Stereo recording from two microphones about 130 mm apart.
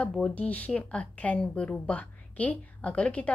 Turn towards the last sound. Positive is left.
turn(degrees=10)  # may be behind; listen again after turning